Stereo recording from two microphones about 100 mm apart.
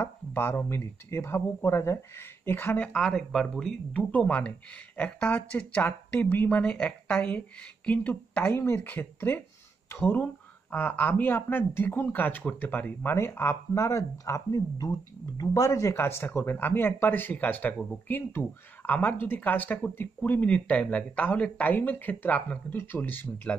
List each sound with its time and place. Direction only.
0.0 s speech: 25° left (ahead or behind)
2.9 s speech: 5° left (ahead or behind)